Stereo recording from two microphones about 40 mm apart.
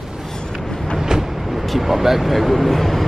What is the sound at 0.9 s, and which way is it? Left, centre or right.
Speech, centre.